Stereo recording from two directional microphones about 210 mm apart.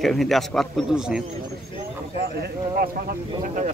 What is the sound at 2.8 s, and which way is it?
Speech, 40° right (ahead or behind).